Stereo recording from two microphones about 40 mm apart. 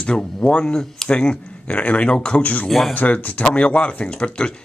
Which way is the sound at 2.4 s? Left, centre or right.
Left.